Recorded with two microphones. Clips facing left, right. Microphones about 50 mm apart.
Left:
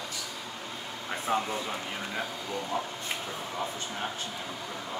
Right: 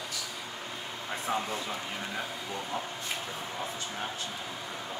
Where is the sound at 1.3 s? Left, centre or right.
Left.